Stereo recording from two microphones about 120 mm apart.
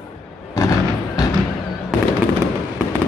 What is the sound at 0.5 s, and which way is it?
Fireworks, 30° left (ahead or behind).